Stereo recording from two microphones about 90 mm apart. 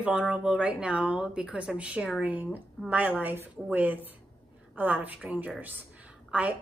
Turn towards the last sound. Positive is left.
turn(degrees=-15)  # may be behind; listen again after turning